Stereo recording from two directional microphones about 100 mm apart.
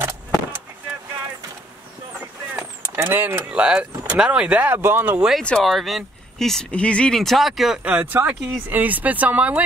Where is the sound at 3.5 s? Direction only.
10° right (ahead or behind).